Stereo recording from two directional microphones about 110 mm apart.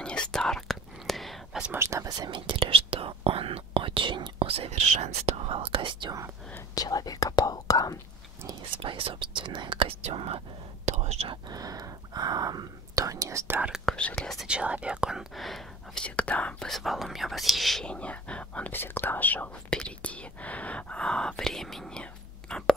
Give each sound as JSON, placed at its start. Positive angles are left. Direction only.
{"t": 0.0, "sound": "whispering", "side_deg": 10}
{"t": 1.8, "sound": "speech", "side_deg": -25}
{"t": 6.7, "sound": "speech", "side_deg": 35}
{"t": 8.8, "sound": "speech", "side_deg": -55}
{"t": 10.9, "sound": "whispering", "side_deg": -80}
{"t": 11.4, "sound": "speech", "side_deg": -35}
{"t": 13.8, "sound": "speech", "side_deg": 5}
{"t": 14.5, "sound": "speech", "side_deg": -10}
{"t": 22.5, "sound": "whispering", "side_deg": 5}